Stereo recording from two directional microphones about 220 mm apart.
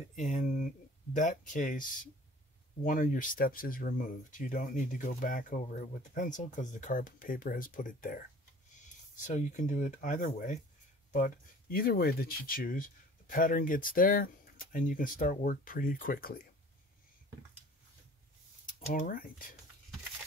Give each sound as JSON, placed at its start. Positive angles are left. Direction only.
{"t": 0.1, "sound": "a sound", "side_deg": 35}
{"t": 1.1, "sound": "speech", "side_deg": 35}
{"t": 18.9, "sound": "speech", "side_deg": 40}